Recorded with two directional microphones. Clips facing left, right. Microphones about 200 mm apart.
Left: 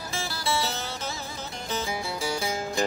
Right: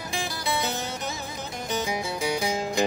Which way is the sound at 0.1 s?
15° right (ahead or behind).